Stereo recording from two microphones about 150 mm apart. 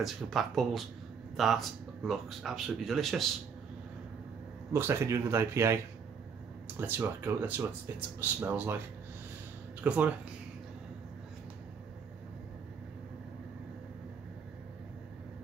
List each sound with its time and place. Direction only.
0.0 s speech: centre (ahead or behind)
4.7 s speech: 20° right (ahead or behind)
6.8 s speech: 15° right (ahead or behind)
9.8 s speech: 10° right (ahead or behind)